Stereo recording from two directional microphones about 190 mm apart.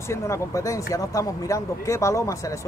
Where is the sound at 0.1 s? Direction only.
15° left (ahead or behind).